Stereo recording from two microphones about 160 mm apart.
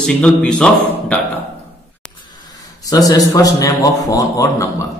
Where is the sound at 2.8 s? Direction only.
25° left (ahead or behind).